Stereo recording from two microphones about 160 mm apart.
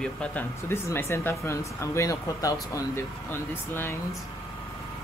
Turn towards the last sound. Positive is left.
turn(degrees=15)  # may be behind; listen again after turning